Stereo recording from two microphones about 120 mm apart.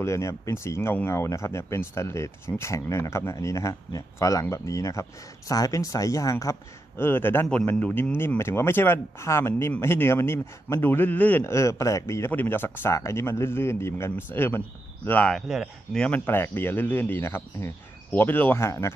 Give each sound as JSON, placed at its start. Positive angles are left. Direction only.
{"t": 0.0, "sound": "a man's voice", "side_deg": 25}
{"t": 15.3, "sound": "speech", "side_deg": -5}
{"t": 16.0, "sound": "speech", "side_deg": 15}